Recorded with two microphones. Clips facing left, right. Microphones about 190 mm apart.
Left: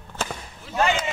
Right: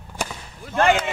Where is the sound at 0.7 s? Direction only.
55° right (ahead or behind).